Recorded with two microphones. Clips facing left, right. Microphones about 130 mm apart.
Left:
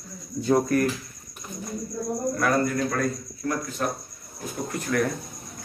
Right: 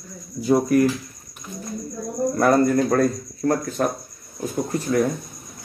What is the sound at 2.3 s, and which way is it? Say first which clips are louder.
Speech: right 8 dB; 40° right (ahead or behind).